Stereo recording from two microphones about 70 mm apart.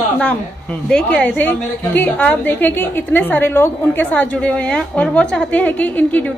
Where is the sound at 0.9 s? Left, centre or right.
Centre.